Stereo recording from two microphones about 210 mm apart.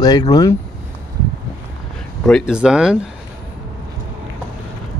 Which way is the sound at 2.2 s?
Centre (ahead or behind).